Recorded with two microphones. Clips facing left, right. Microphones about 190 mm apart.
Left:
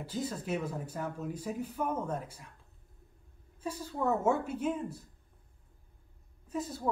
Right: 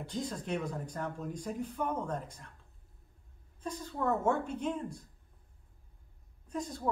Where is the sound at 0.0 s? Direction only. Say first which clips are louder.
Left 1 dB; 5° left (ahead or behind).